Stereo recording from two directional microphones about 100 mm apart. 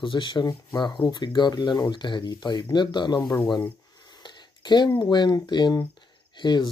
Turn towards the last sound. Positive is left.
turn(degrees=50)  # may be behind; listen again after turning